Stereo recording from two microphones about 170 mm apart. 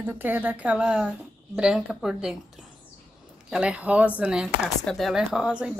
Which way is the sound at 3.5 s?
5° right (ahead or behind).